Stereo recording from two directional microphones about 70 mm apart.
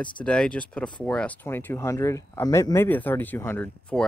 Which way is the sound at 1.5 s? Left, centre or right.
Left.